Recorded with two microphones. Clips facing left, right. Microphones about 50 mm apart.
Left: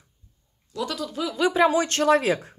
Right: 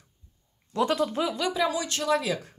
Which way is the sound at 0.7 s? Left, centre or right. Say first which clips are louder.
Right 5 dB; right.